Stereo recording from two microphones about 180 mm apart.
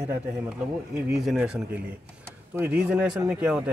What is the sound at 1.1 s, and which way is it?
Speech, 5° right (ahead or behind).